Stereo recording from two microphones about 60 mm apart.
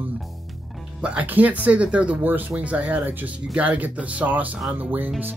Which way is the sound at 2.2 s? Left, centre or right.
Right.